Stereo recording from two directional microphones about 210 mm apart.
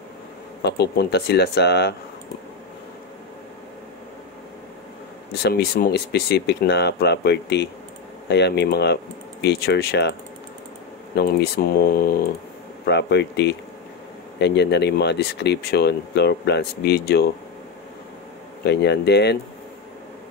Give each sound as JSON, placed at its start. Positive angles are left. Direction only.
{"t": 0.6, "sound": "speech", "side_deg": 50}
{"t": 5.3, "sound": "speech", "side_deg": 50}
{"t": 11.1, "sound": "speech", "side_deg": 50}
{"t": 18.7, "sound": "speech", "side_deg": 55}